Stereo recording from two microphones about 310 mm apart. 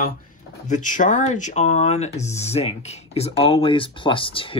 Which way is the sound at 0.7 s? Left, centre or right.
Left.